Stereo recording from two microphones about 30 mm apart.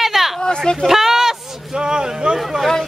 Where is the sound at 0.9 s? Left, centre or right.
Centre.